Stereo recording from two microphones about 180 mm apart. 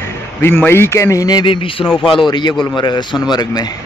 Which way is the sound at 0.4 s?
10° left (ahead or behind).